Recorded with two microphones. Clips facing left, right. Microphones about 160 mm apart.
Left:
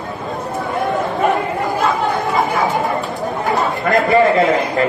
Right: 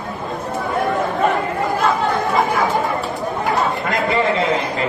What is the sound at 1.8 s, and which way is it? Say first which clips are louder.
Chatter: left 1 dB; centre (ahead or behind).